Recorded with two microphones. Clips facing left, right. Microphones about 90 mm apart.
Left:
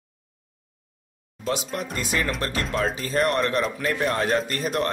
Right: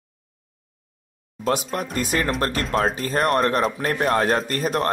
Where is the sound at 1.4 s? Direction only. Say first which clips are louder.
Right 4 dB; 45° right (ahead or behind).